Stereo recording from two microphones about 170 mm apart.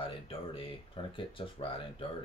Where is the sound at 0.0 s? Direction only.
30° left (ahead or behind).